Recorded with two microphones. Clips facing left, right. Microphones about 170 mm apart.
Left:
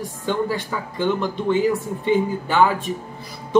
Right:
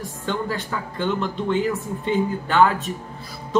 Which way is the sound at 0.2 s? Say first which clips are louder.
Left 3 dB; 10° left (ahead or behind).